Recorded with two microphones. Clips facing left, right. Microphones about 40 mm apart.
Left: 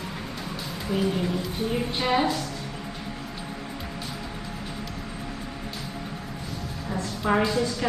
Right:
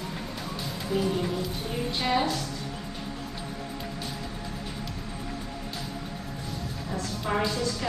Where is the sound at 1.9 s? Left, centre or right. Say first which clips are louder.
Left 1 dB; centre.